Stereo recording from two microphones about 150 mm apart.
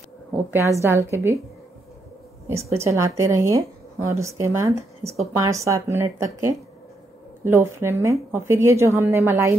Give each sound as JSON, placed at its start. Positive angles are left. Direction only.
{"t": 0.3, "sound": "a woman's voice", "side_deg": -15}
{"t": 2.8, "sound": "a woman's voice", "side_deg": -20}